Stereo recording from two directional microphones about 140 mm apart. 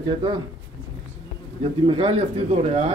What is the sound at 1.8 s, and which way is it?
Speech, 40° right (ahead or behind).